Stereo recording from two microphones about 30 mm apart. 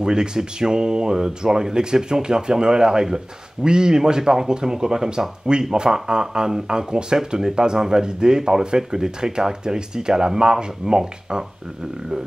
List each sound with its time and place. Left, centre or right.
0.0 s speech: right